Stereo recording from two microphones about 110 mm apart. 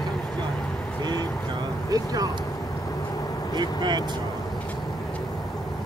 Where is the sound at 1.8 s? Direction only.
30° right (ahead or behind).